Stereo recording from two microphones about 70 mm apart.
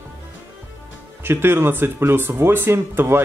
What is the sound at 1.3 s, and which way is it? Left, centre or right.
Speech, right.